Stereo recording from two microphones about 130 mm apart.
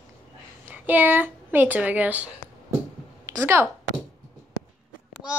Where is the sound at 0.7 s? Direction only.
15° right (ahead or behind).